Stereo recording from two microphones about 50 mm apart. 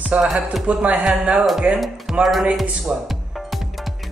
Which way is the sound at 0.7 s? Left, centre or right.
Right.